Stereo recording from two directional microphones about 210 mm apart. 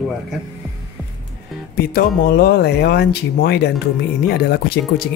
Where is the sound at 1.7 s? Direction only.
50° left (ahead or behind).